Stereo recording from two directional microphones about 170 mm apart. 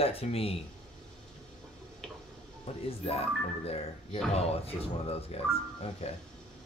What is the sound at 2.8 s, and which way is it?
Speech, 35° left (ahead or behind).